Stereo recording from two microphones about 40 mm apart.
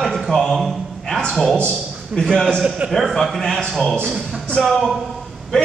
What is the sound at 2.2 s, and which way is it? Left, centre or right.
A man's voice, centre.